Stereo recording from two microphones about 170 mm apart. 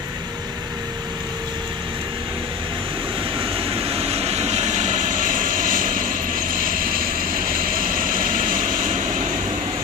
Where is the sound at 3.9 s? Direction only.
35° right (ahead or behind).